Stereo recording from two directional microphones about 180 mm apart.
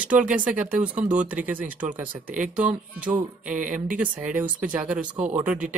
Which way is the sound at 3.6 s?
45° right (ahead or behind).